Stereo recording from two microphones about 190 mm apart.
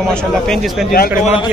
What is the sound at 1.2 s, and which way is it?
Speech, 30° left (ahead or behind).